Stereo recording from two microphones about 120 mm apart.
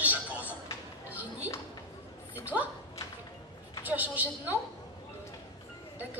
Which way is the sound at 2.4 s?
15° right (ahead or behind).